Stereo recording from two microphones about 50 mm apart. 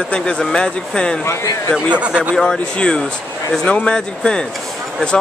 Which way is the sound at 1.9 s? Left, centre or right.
Right.